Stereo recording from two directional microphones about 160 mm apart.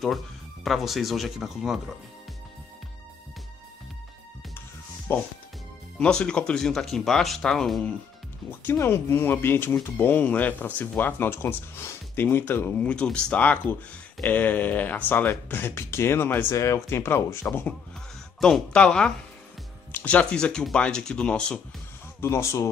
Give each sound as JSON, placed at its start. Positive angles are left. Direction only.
{"t": 0.7, "sound": "speech", "side_deg": 0}
{"t": 5.1, "sound": "speech", "side_deg": 15}
{"t": 8.5, "sound": "speech", "side_deg": 15}
{"t": 22.2, "sound": "speech", "side_deg": 15}